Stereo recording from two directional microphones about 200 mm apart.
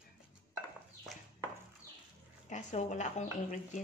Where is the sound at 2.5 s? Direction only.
35° left (ahead or behind).